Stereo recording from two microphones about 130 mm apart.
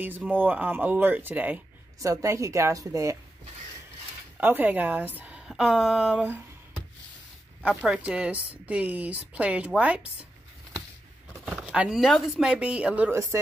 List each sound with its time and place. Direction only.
0.0 s a woman's voice: 15° right (ahead or behind)
2.0 s a woman's voice: 25° right (ahead or behind)
4.4 s a woman's voice: 15° right (ahead or behind)
7.6 s a woman's voice: 5° right (ahead or behind)
11.4 s a woman's voice: 5° right (ahead or behind)